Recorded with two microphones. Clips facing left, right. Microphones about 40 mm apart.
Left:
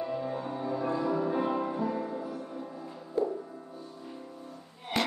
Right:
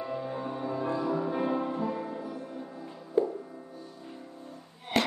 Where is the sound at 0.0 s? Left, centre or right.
Centre.